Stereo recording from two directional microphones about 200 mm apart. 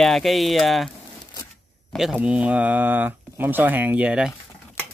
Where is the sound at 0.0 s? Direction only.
Centre (ahead or behind).